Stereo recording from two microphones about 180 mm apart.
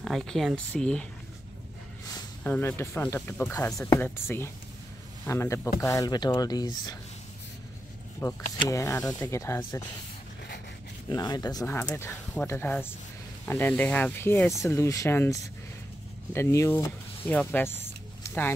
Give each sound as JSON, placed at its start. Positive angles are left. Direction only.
{"t": 0.0, "sound": "speech", "side_deg": 0}
{"t": 2.4, "sound": "speech", "side_deg": 10}
{"t": 8.2, "sound": "speech", "side_deg": 15}
{"t": 11.1, "sound": "speech", "side_deg": 20}
{"t": 17.3, "sound": "a sound", "side_deg": 10}